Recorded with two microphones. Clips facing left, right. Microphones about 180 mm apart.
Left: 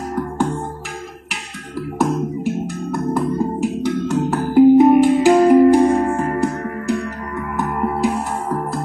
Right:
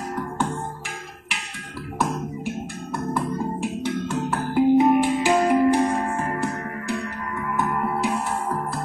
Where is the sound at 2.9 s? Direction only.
45° left (ahead or behind).